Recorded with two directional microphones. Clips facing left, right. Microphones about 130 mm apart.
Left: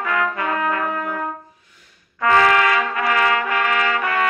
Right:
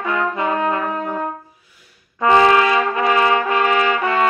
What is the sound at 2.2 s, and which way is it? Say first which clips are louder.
Trumpet: right 3 dB; 25° right (ahead or behind).